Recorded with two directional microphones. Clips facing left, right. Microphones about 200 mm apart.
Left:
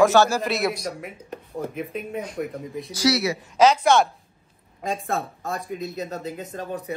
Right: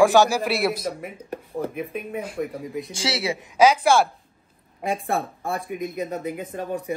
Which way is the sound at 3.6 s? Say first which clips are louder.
Even; 10° right (ahead or behind).